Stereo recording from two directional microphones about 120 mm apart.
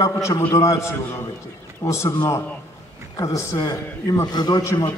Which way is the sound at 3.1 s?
25° left (ahead or behind).